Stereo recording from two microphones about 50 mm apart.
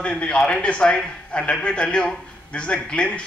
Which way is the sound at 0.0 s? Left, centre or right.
Left.